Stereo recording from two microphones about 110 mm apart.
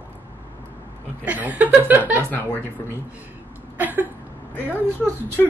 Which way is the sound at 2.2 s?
15° left (ahead or behind).